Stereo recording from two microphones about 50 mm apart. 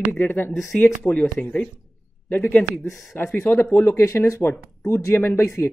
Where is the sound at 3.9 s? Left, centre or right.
Left.